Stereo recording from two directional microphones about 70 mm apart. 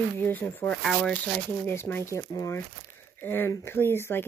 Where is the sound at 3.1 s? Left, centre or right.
Left.